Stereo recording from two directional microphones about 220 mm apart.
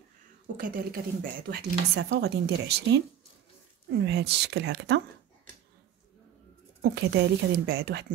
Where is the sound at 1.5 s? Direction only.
55° right (ahead or behind).